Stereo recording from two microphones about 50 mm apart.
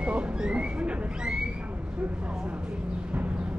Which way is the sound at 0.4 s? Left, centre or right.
Right.